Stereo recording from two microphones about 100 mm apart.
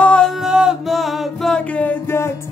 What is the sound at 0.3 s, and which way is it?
Music, 5° right (ahead or behind).